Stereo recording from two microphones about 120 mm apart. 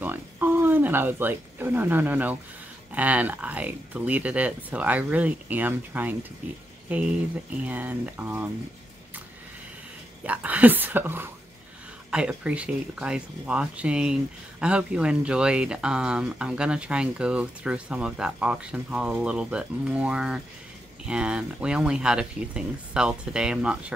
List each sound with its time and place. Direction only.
0.0 s a sound: 15° right (ahead or behind)
2.9 s speech: 10° right (ahead or behind)
10.2 s speech: 10° right (ahead or behind)